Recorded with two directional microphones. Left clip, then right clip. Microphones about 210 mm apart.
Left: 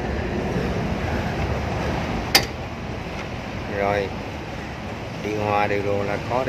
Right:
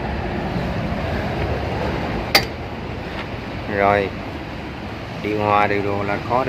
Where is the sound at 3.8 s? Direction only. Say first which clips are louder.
Right 6 dB; 15° right (ahead or behind).